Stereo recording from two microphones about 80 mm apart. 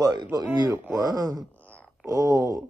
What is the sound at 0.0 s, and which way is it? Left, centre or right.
Speech, right.